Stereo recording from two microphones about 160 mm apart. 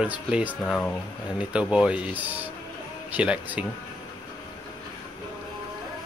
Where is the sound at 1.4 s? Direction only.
5° right (ahead or behind).